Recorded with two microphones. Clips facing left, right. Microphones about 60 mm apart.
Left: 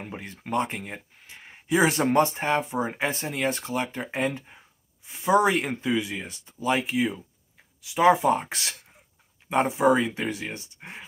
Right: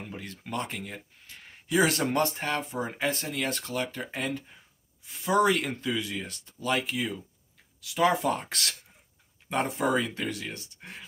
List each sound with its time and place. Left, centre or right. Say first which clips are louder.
0.0 s speech: left 3 dB; left